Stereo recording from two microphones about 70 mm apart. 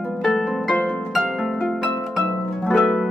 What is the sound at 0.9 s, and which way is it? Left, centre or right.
Harp, centre.